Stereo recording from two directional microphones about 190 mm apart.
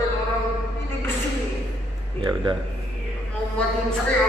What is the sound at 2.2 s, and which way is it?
Speech, 25° right (ahead or behind).